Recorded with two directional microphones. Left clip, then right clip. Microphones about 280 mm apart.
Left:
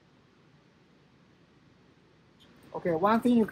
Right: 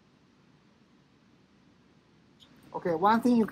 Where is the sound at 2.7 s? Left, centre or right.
Centre.